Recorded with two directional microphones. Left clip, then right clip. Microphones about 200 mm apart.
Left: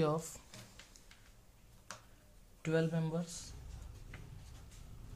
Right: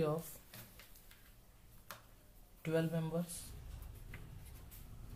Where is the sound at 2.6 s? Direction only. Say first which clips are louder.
Left 2 dB; 30° left (ahead or behind).